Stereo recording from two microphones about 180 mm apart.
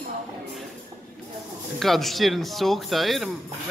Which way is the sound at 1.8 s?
Centre (ahead or behind).